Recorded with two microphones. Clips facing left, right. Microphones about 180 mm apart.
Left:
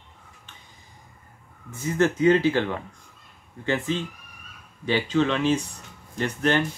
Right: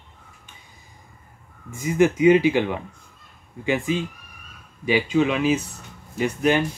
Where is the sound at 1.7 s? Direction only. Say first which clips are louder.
Right 4 dB; 10° right (ahead or behind).